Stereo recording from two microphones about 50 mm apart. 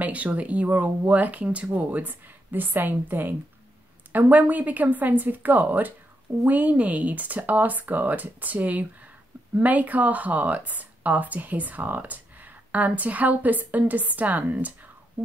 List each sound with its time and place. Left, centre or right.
0.0 s speech: right